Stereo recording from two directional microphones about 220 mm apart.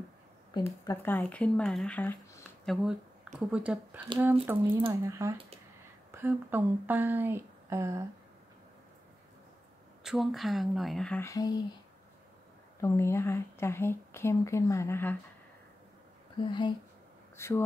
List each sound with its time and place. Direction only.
0.6 s a woman's voice: 15° left (ahead or behind); by 8.0 s 15° right (ahead or behind)
10.0 s speech: centre (ahead or behind); by 11.6 s 15° left (ahead or behind)
12.8 s a woman's voice: 10° left (ahead or behind)
16.3 s speech: 20° left (ahead or behind)